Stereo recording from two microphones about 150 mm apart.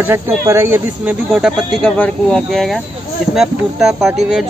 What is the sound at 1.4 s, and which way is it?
Speech, 5° right (ahead or behind).